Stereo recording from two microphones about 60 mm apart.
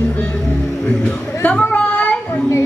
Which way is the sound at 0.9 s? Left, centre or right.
Left.